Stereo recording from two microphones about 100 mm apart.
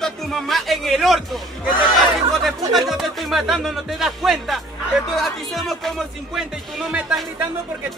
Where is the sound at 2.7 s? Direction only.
Centre (ahead or behind).